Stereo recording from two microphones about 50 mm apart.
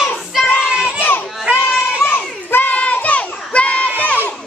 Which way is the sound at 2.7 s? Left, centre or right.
Left.